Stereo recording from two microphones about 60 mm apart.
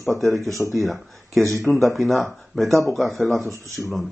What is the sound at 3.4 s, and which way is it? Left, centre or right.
Speech, right.